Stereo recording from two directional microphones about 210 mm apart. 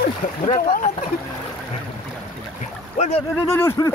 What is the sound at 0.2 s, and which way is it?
Speech, 40° left (ahead or behind).